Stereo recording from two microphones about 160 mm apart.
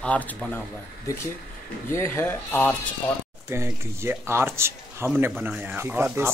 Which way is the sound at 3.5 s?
15° right (ahead or behind).